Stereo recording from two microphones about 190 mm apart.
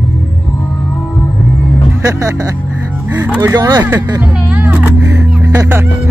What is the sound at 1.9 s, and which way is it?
Speech, 15° right (ahead or behind).